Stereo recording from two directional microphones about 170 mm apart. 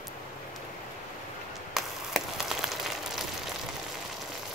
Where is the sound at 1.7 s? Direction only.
Centre (ahead or behind).